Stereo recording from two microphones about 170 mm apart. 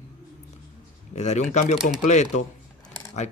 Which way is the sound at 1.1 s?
40° left (ahead or behind).